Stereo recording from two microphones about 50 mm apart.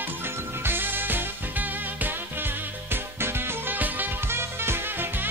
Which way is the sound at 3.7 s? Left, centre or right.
Right.